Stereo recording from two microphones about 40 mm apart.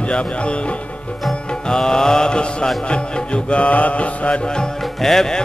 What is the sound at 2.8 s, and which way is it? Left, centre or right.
Music, left.